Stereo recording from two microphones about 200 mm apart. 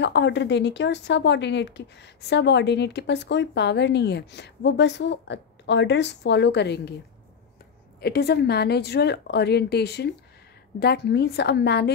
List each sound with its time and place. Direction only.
0.0 s speech: 60° left (ahead or behind)
8.0 s speech: 55° left (ahead or behind)